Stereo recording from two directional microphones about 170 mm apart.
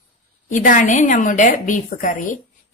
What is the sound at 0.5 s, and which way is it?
A woman's voice, 50° left (ahead or behind).